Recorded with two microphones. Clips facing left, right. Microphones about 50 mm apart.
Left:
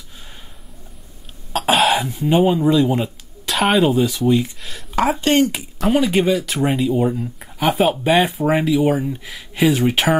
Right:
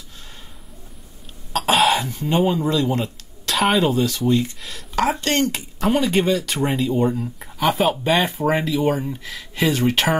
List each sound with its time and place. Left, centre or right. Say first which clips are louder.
1.5 s cough: left 1 dB; centre
2.0 s speech: left 4 dB; centre
3.4 s speech: left 2 dB; centre
4.6 s speech: left 2 dB; centre